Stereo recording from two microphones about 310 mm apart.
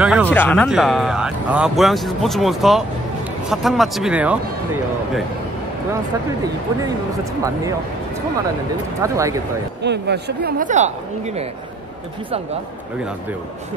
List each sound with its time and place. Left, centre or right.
0.0 s speech: centre
9.0 s speech: centre
9.8 s speech: right